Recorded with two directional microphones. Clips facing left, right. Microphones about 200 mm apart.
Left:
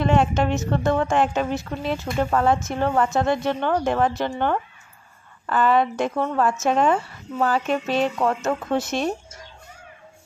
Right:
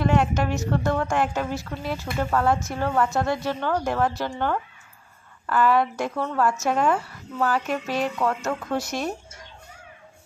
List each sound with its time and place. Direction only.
0.0 s a woman's voice: 25° left (ahead or behind)